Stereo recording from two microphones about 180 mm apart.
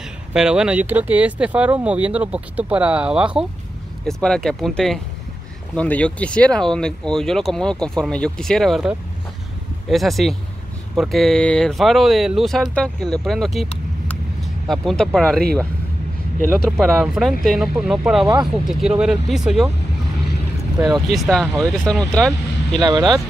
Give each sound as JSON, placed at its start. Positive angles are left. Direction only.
{"t": 0.3, "sound": "speech", "side_deg": -5}
{"t": 14.4, "sound": "vehicle", "side_deg": 0}
{"t": 15.1, "sound": "speech", "side_deg": 0}
{"t": 16.6, "sound": "speech", "side_deg": 0}
{"t": 18.2, "sound": "speech", "side_deg": -20}
{"t": 18.7, "sound": "speech", "side_deg": -5}
{"t": 21.1, "sound": "speech", "side_deg": 0}
{"t": 22.8, "sound": "speech", "side_deg": -25}